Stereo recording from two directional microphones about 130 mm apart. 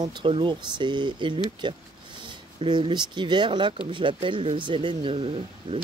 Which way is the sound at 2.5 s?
40° right (ahead or behind).